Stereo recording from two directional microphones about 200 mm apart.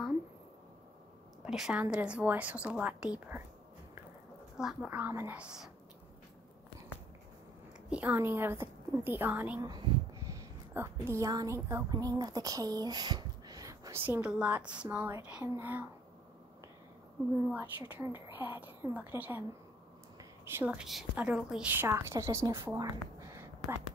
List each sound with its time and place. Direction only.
1.4 s speech: 5° right (ahead or behind)
4.6 s speech: 5° right (ahead or behind)
7.9 s speech: 10° right (ahead or behind)
9.6 s speech: 20° right (ahead or behind)
17.5 s a woman's voice: 10° right (ahead or behind)